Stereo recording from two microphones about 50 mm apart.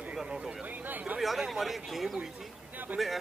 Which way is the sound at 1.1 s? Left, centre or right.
Right.